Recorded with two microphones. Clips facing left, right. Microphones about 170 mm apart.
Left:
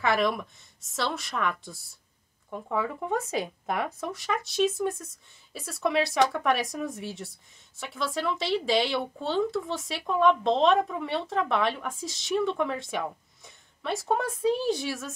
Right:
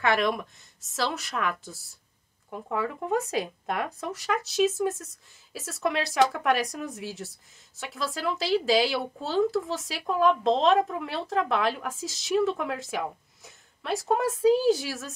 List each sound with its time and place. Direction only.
0.0 s speech: centre (ahead or behind)